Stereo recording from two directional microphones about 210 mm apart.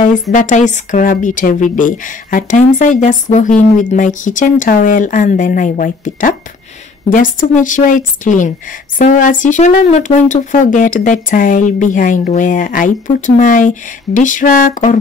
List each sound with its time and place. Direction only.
0.0 s a woman's voice: 40° left (ahead or behind)